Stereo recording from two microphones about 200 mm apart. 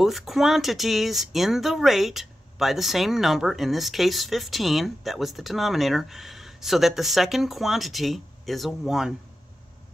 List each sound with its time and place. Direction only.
0.0 s speech: centre (ahead or behind)